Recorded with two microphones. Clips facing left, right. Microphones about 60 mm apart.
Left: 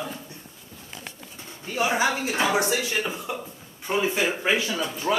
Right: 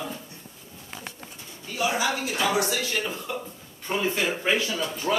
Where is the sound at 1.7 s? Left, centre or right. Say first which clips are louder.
Left 2 dB; left.